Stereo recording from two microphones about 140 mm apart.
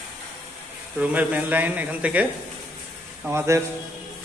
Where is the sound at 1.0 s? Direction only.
10° right (ahead or behind).